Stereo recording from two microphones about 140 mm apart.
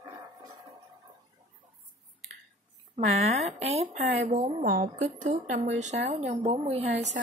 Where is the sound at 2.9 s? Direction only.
50° right (ahead or behind).